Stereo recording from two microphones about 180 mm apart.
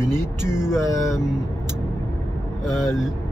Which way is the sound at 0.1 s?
20° right (ahead or behind).